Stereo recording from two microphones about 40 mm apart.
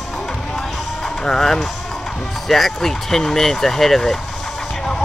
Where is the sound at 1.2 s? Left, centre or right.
Centre.